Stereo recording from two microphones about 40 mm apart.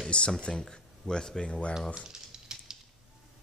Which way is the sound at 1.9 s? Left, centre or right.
Centre.